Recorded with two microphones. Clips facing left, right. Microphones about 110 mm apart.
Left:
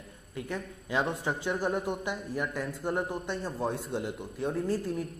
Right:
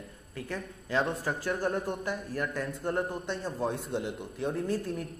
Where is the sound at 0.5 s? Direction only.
10° left (ahead or behind).